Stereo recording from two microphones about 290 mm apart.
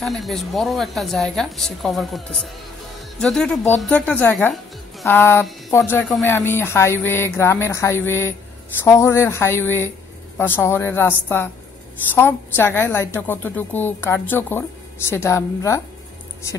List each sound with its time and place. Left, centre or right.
0.0 s a woman's voice: centre